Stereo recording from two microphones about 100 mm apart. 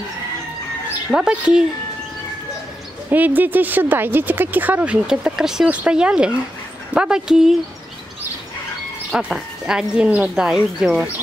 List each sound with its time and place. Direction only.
1.1 s speech: 10° right (ahead or behind)
3.1 s speech: 20° right (ahead or behind)
5.0 s speech: 5° right (ahead or behind)
9.1 s speech: 5° right (ahead or behind)